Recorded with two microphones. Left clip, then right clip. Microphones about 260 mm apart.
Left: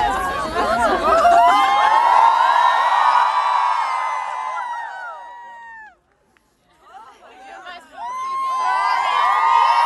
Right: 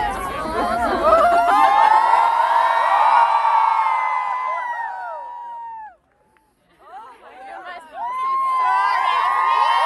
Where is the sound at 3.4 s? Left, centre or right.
Right.